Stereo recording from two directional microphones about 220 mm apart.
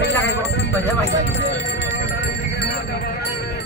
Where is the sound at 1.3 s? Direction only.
55° left (ahead or behind).